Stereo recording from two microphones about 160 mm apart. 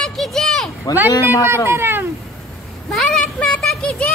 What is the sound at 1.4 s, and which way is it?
Speech, 15° right (ahead or behind).